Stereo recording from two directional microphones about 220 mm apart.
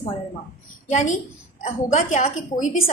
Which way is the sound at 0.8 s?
35° left (ahead or behind).